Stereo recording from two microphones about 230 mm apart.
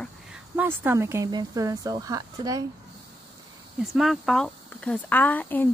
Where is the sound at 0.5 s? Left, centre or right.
Centre.